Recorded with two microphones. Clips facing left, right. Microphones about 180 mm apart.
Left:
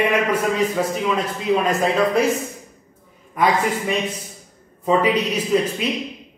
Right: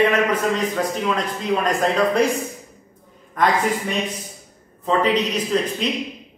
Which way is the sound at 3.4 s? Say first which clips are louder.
Left 1 dB; 10° left (ahead or behind).